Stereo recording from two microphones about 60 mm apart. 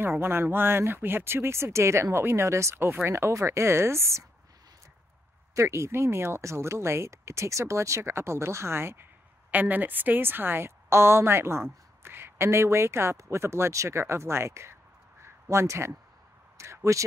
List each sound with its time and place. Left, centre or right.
0.0 s a woman's voice: right
5.5 s a woman's voice: right
9.5 s a woman's voice: right
16.5 s a sound: right